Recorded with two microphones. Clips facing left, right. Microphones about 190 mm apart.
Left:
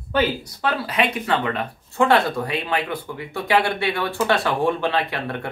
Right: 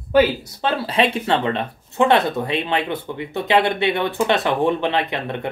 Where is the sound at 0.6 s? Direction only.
25° right (ahead or behind).